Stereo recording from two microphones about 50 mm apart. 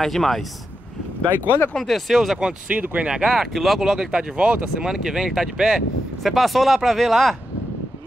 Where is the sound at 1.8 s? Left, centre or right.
Centre.